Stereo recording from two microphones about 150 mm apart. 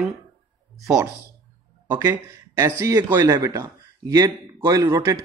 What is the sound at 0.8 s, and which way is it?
Speech, 5° right (ahead or behind).